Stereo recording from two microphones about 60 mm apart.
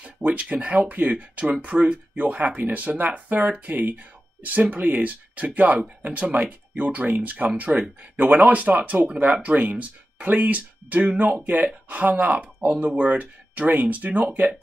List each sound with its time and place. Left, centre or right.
0.0 s speech: right